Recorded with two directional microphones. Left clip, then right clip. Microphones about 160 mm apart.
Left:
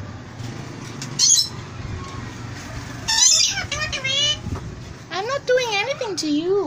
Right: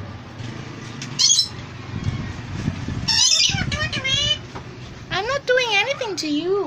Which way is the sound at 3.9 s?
90° left.